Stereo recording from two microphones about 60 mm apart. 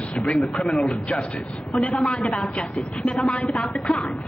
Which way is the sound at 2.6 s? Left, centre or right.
Centre.